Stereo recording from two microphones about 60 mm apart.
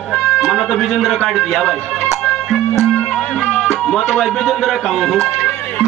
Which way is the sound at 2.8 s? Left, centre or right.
Left.